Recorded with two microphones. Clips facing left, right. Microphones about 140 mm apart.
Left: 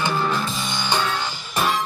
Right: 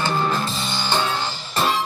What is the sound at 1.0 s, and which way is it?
Music, 15° right (ahead or behind).